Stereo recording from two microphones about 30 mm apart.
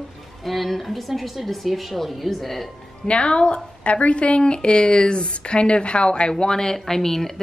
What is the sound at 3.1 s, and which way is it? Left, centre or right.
Speech, left.